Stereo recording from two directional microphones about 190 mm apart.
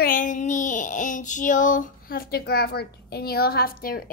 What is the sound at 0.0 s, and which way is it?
Child singing, 45° left (ahead or behind).